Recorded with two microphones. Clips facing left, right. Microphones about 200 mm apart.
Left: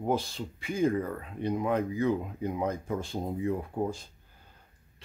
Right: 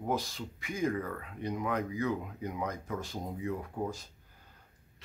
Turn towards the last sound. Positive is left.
turn(degrees=30)  # may be behind; listen again after turning